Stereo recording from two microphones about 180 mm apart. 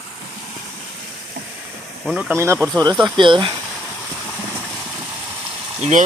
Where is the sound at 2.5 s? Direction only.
5° left (ahead or behind).